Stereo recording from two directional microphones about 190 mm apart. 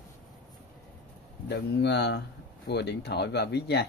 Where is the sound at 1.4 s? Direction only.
60° left (ahead or behind).